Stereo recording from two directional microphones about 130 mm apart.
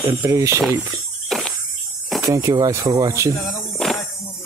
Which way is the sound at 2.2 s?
25° right (ahead or behind).